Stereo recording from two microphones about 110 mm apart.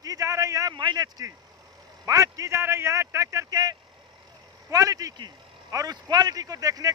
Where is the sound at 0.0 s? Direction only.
30° right (ahead or behind).